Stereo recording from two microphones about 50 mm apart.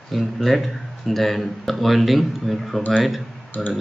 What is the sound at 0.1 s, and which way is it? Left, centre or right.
Speech, centre.